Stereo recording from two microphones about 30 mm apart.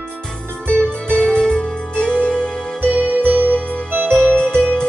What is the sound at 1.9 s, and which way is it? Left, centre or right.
Music, left.